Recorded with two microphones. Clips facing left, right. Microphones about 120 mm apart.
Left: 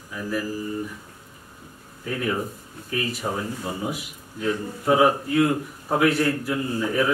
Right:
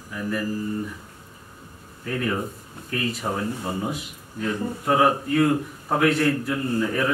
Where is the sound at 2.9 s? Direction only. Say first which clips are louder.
Even; 5° left (ahead or behind).